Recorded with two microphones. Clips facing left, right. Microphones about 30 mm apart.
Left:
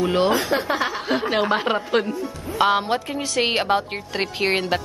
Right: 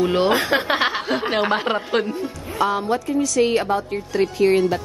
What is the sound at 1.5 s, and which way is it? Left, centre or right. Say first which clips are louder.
Speech: even; centre.